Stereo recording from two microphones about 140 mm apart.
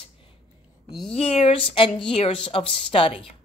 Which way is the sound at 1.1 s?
45° left (ahead or behind).